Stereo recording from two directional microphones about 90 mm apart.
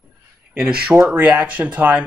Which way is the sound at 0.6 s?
10° right (ahead or behind).